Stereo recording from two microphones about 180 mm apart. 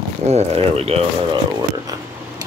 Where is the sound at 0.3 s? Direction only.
35° right (ahead or behind).